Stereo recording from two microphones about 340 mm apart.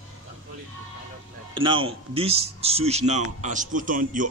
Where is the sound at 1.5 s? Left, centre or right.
Centre.